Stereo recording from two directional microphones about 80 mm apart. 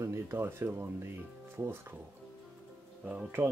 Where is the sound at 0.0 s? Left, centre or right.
Right.